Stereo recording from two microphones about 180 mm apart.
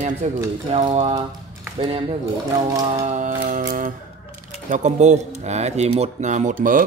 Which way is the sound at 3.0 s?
45° right (ahead or behind).